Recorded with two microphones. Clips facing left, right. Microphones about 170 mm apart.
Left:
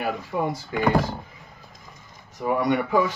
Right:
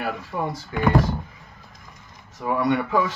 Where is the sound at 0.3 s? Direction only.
15° left (ahead or behind).